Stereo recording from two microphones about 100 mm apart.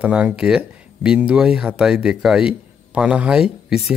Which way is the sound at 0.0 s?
10° right (ahead or behind).